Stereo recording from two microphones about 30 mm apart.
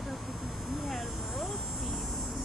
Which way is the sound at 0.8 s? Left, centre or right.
Centre.